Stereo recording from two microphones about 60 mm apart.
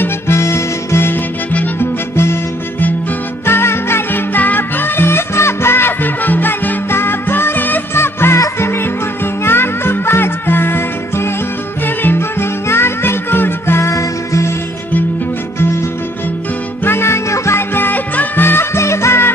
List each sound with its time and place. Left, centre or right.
0.0 s harmonica: left
1.8 s music: left
3.4 s music: left
15.6 s music: left